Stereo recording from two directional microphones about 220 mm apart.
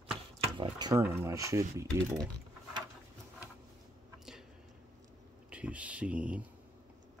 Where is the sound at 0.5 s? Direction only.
20° right (ahead or behind).